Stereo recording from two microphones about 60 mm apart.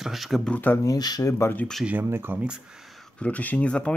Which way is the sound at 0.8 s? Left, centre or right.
Left.